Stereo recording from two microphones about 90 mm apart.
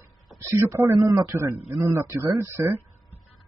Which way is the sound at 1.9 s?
30° right (ahead or behind).